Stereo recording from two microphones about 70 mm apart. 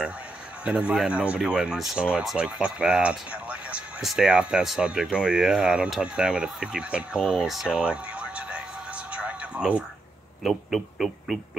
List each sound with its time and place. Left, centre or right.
0.7 s speech: centre
4.0 s speech: centre
7.2 s speech: centre
7.7 s a sound: centre
10.4 s speech: centre